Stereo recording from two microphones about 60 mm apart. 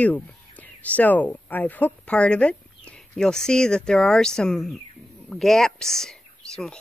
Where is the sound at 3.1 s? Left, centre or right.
Centre.